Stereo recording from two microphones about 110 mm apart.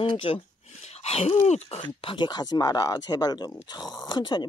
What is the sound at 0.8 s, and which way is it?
A woman's voice, 75° left (ahead or behind).